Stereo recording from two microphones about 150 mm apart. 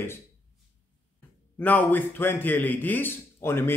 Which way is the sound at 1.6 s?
10° left (ahead or behind).